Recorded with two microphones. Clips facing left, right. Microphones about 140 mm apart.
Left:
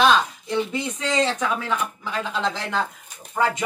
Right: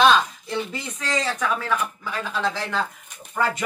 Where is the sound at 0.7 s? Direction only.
20° left (ahead or behind).